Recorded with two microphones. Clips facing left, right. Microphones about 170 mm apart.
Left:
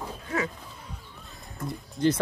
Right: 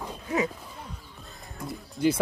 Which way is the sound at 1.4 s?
Centre (ahead or behind).